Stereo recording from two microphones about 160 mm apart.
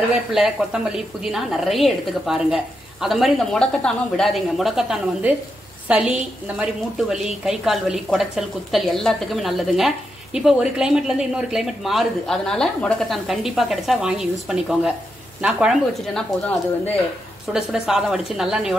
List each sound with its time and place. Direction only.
0.1 s a woman's voice: 5° right (ahead or behind)